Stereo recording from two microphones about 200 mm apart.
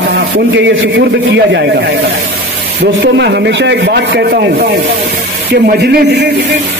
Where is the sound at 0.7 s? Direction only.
60° right (ahead or behind).